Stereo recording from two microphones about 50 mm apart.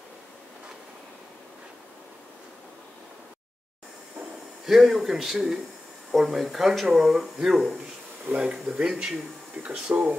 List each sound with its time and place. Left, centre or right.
4.6 s speech: centre
8.4 s speech: right
8.8 s speech: centre
9.6 s speech: right